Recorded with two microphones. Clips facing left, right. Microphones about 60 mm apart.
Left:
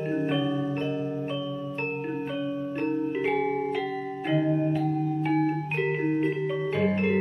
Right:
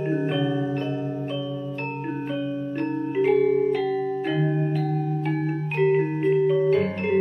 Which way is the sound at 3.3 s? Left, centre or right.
Centre.